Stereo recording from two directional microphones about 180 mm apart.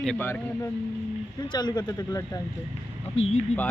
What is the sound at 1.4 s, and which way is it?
A man's voice, 25° left (ahead or behind).